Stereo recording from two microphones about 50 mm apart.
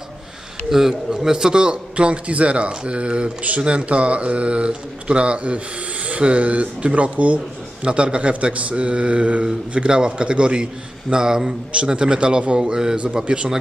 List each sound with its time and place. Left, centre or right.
0.7 s a man's voice: centre